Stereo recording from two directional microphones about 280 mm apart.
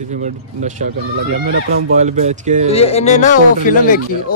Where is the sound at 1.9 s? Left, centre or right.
Right.